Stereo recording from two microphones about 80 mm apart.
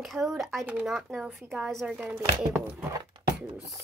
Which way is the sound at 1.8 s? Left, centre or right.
Centre.